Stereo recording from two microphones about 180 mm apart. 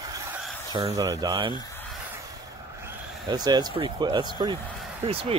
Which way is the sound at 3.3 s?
25° right (ahead or behind).